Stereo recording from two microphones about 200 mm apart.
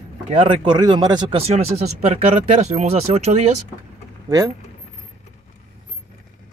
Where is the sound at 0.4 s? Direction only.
25° right (ahead or behind).